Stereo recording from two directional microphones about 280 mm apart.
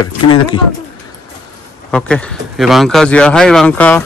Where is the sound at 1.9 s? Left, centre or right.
Centre.